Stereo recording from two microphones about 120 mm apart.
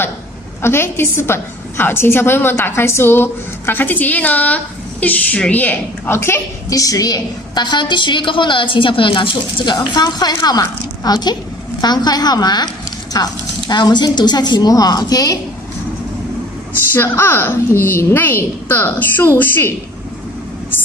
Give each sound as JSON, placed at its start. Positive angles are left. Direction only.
{"t": 0.6, "sound": "a woman's voice", "side_deg": 20}
{"t": 16.9, "sound": "a woman's voice", "side_deg": 20}